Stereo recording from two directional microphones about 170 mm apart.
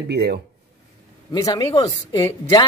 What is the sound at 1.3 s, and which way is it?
A woman's voice, 25° left (ahead or behind).